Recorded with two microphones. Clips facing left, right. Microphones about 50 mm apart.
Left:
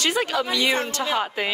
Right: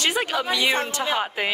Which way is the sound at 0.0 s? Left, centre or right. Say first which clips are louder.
Left 1 dB; right.